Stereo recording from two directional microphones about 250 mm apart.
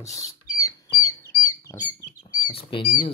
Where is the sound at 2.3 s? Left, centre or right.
Left.